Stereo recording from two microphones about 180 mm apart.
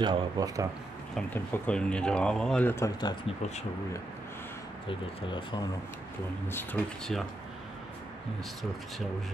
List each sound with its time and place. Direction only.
0.0 s speech: 20° right (ahead or behind)
1.1 s speech: 10° left (ahead or behind); by 3.3 s 25° left (ahead or behind)
4.8 s speech: 25° left (ahead or behind)
6.4 s speech: 10° left (ahead or behind)